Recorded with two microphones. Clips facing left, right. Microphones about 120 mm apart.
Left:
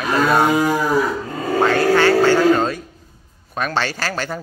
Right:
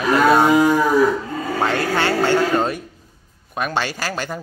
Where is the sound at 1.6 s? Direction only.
20° right (ahead or behind).